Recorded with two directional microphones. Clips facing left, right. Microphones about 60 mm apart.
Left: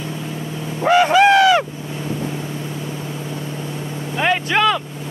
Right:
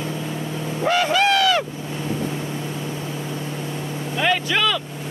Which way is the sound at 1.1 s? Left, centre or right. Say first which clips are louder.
Left 7 dB; left.